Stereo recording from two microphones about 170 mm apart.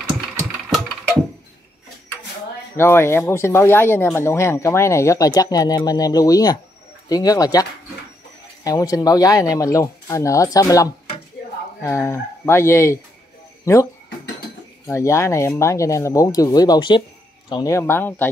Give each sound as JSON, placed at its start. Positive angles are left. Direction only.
{"t": 2.8, "sound": "speech", "side_deg": 15}
{"t": 8.6, "sound": "speech", "side_deg": 20}
{"t": 14.9, "sound": "speech", "side_deg": 15}